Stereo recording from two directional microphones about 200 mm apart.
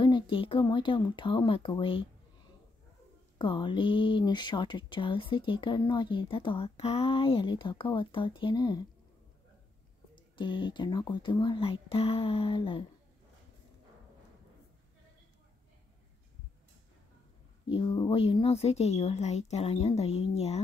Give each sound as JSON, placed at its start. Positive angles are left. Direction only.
{"t": 0.0, "sound": "speech", "side_deg": 25}
{"t": 3.3, "sound": "speech", "side_deg": 25}
{"t": 10.1, "sound": "speech", "side_deg": 25}
{"t": 17.6, "sound": "a woman's voice", "side_deg": 25}